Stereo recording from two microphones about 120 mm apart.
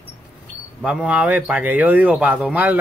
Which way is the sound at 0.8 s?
10° right (ahead or behind).